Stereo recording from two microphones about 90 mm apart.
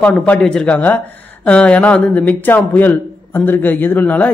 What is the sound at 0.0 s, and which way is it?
Speech, 15° left (ahead or behind).